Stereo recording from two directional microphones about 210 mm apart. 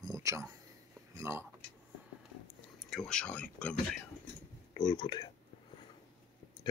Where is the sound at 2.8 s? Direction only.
Centre (ahead or behind).